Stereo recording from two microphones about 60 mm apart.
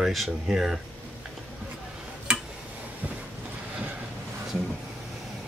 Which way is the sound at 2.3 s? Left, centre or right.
Centre.